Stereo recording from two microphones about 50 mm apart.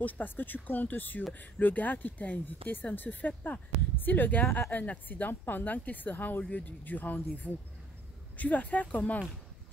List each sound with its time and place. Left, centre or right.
0.0 s speech: left